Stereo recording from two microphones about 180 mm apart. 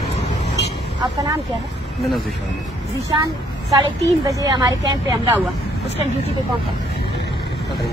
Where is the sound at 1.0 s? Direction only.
20° right (ahead or behind).